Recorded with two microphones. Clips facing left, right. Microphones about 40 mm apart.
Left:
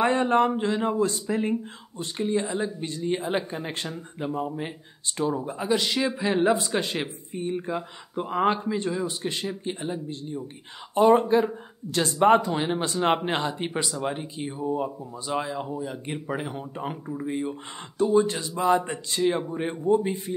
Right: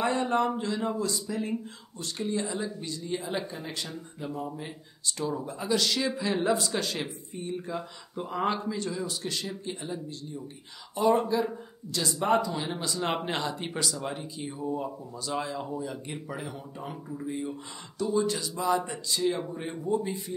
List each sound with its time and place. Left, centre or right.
0.0 s speech: left
1.5 s speech: left
5.3 s speech: left
11.0 s speech: left; by 16.0 s centre
16.1 s speech: left